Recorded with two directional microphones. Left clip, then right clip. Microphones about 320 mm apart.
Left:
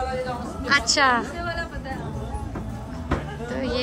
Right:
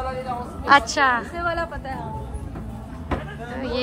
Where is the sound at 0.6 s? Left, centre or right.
Centre.